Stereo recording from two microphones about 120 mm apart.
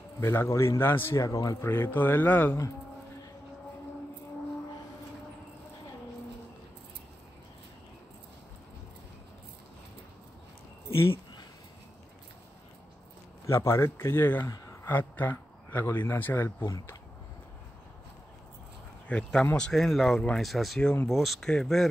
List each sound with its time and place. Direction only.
0.2 s a man's voice: 20° left (ahead or behind)
1.7 s speech: 15° left (ahead or behind)
13.5 s a man's voice: 25° left (ahead or behind)
16.6 s a man's voice: 25° left (ahead or behind)
19.0 s speech: 10° left (ahead or behind)